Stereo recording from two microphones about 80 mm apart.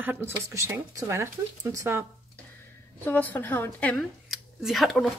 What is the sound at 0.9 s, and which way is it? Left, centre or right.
A woman's voice, right.